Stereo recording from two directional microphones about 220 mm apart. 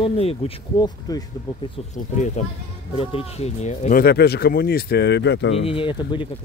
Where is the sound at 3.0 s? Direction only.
25° left (ahead or behind); by 5.6 s 55° left (ahead or behind).